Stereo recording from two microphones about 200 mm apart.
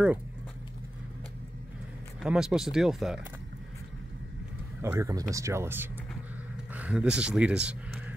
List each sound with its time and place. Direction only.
2.2 s speech: 5° right (ahead or behind)
4.8 s speech: 15° right (ahead or behind)